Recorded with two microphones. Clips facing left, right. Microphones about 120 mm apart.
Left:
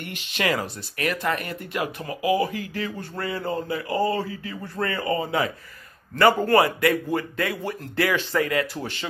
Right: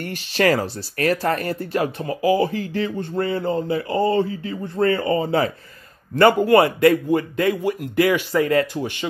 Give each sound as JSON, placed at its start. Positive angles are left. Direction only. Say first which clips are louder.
{"t": 0.0, "sound": "speech", "louder": "right 8 dB", "side_deg": -40}
{"t": 8.5, "sound": "speech", "louder": "right 6 dB", "side_deg": -30}